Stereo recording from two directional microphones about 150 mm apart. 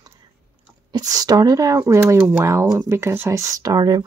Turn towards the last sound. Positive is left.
turn(degrees=-25)  # may be behind; listen again after turning